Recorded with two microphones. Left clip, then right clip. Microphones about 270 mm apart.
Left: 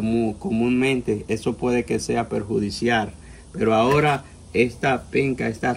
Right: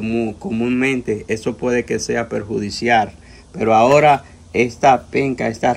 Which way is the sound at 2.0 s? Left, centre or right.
Centre.